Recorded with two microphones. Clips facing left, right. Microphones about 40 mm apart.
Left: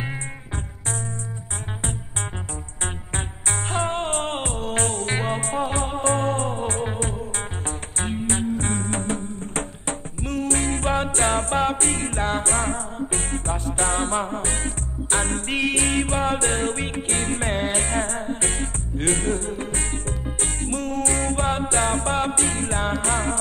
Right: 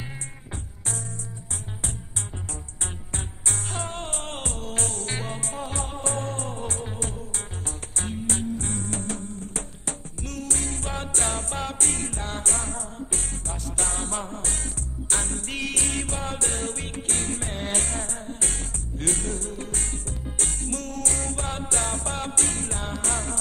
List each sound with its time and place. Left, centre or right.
2.8 s music: left